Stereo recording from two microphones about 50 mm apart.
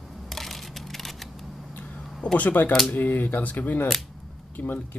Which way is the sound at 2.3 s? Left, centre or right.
Left.